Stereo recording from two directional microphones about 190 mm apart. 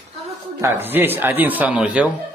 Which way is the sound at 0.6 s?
10° right (ahead or behind).